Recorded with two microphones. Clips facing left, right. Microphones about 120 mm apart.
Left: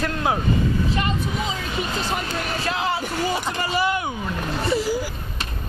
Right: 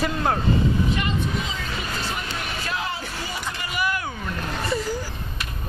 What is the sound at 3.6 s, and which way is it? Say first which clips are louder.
Vehicle: left 3 dB; 25° left (ahead or behind).